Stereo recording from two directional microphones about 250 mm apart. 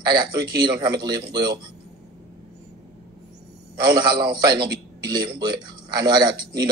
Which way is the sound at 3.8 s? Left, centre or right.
Centre.